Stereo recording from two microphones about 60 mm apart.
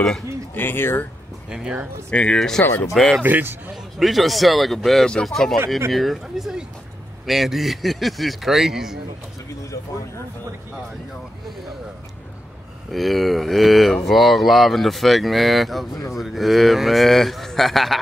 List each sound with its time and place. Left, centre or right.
0.6 s speech: left
1.5 s speech: centre
2.0 s speech: centre
3.2 s a man's voice: right
3.7 s speech: centre
12.9 s speech: centre